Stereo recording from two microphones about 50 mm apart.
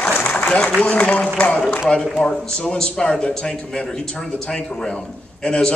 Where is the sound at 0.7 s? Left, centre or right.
Left.